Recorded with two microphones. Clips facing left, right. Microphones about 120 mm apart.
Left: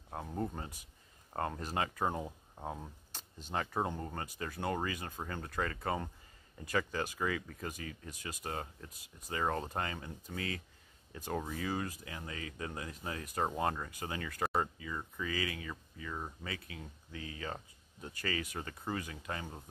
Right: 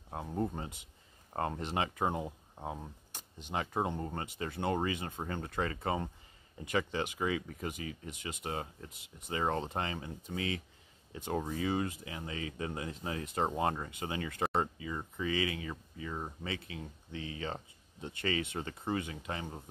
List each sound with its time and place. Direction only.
0.1 s speech: 15° right (ahead or behind)